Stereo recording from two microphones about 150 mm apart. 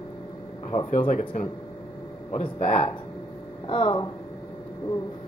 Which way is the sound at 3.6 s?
35° left (ahead or behind).